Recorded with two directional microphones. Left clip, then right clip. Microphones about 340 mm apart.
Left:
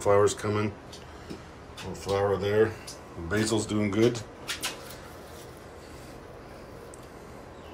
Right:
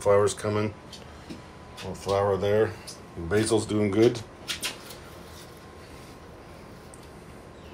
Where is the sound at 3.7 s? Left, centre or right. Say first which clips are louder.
Right 3 dB; centre.